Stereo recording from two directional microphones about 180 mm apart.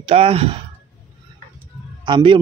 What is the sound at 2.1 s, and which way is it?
Speech, 25° right (ahead or behind).